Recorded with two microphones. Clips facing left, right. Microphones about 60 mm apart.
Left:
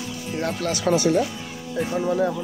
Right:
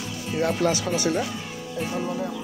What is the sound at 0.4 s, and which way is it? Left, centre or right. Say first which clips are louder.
Speech: right 4 dB; centre.